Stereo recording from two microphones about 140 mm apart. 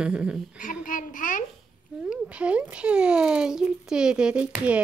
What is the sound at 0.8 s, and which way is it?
Speech, 70° left (ahead or behind).